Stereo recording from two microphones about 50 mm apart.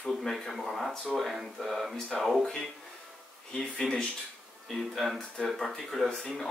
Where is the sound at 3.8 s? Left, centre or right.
Centre.